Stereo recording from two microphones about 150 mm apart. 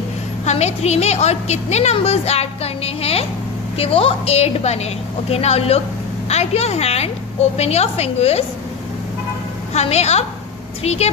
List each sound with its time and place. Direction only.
0.5 s a woman's voice: 45° left (ahead or behind)
9.8 s a woman's voice: 45° left (ahead or behind)